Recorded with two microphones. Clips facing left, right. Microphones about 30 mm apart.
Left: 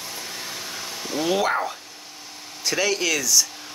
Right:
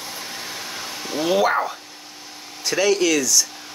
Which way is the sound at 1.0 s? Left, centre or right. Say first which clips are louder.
Right 3 dB; centre.